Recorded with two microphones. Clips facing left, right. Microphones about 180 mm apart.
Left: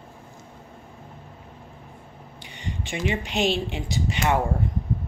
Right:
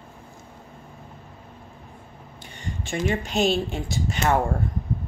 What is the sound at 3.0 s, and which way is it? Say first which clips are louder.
Speech: right 1 dB; 45° right (ahead or behind).